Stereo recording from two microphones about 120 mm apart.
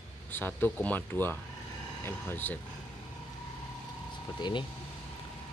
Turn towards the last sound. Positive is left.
turn(degrees=40)  # may be behind; listen again after turning